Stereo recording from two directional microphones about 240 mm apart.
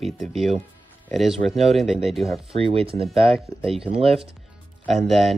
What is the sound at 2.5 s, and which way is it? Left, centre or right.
Speech, right.